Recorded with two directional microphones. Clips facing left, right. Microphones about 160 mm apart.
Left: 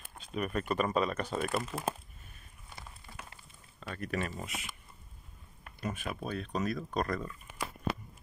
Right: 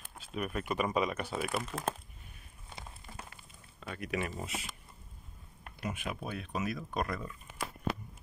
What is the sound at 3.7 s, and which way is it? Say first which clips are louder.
Speech: even; 10° right (ahead or behind).